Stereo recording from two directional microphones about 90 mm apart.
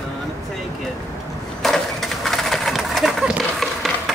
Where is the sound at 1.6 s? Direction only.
5° left (ahead or behind).